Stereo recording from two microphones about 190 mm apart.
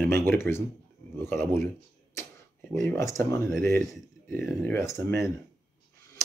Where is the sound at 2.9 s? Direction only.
15° left (ahead or behind).